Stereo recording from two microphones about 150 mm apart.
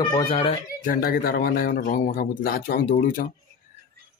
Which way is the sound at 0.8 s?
75° left (ahead or behind).